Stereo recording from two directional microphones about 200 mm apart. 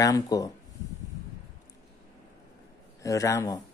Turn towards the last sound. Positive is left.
turn(degrees=15)  # may be behind; listen again after turning